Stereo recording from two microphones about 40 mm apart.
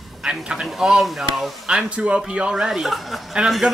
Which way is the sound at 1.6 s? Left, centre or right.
Right.